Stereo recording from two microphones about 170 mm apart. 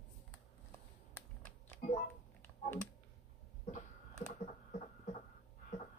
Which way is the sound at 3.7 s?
45° left (ahead or behind).